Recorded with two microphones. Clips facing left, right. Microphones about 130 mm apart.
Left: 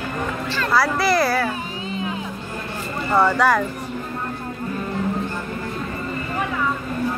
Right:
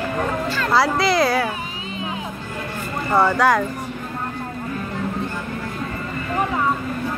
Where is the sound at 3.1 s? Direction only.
10° right (ahead or behind).